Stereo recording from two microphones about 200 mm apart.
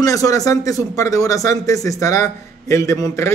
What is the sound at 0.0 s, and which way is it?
Speech, 15° left (ahead or behind).